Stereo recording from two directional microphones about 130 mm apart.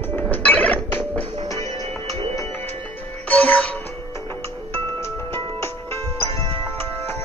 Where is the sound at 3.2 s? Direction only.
10° left (ahead or behind).